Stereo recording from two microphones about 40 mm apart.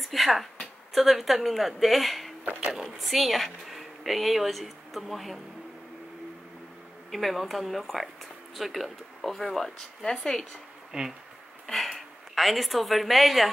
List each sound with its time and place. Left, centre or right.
0.0 s speech: centre
7.1 s speech: centre
9.8 s speech: centre
10.9 s speech: centre
11.6 s speech: centre